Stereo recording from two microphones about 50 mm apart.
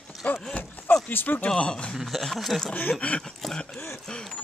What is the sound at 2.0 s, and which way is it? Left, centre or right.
Speech, centre.